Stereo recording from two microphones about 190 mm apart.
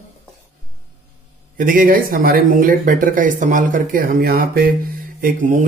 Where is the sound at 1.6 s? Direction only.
45° right (ahead or behind).